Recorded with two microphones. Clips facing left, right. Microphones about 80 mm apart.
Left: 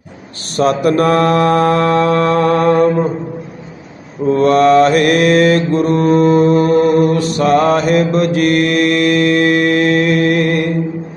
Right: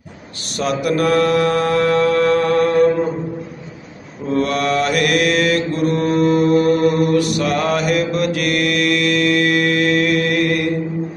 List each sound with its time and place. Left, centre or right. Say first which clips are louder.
0.6 s mantra: left 6 dB; left
4.3 s mantra: left 8 dB; left